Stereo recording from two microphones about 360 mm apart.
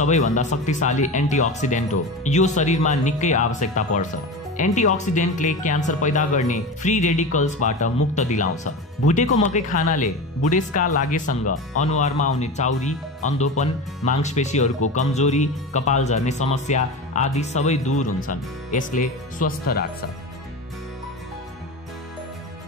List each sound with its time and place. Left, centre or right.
0.0 s speech: centre